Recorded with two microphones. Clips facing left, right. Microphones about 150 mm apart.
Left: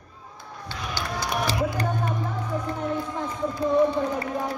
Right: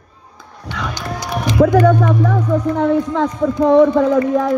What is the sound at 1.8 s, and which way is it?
Speech, 90° right.